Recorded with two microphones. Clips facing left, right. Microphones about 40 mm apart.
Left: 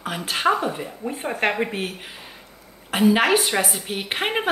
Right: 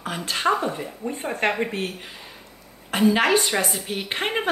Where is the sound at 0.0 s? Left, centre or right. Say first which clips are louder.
Left 2 dB; centre.